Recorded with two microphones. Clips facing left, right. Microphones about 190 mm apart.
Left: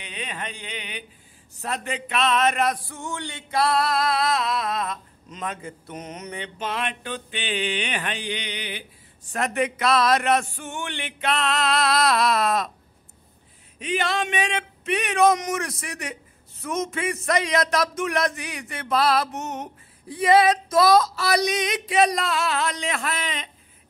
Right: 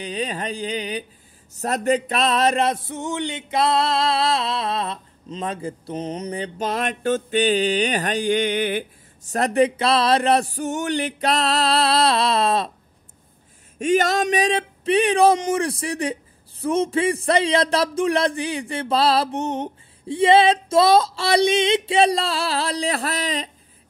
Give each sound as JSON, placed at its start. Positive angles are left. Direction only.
{"t": 0.0, "sound": "music", "side_deg": -35}
{"t": 13.7, "sound": "music", "side_deg": -45}